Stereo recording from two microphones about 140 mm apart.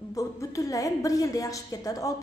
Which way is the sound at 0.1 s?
25° left (ahead or behind).